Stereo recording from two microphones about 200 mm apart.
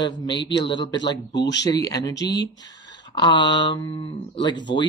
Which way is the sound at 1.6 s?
20° left (ahead or behind).